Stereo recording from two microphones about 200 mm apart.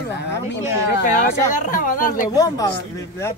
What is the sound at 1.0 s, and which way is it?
Speech, 40° left (ahead or behind).